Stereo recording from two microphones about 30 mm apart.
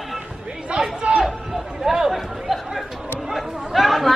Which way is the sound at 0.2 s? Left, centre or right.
Right.